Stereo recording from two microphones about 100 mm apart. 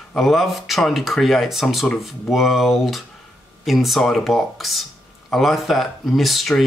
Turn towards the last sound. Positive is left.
turn(degrees=0)  # may be behind; listen again after turning